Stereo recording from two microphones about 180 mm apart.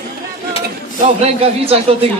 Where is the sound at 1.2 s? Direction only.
35° right (ahead or behind).